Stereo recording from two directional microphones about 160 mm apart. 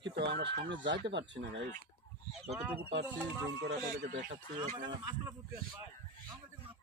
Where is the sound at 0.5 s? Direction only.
90° right.